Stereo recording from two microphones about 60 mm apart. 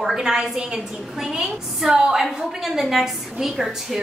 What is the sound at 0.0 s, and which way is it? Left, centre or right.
A woman's voice, centre.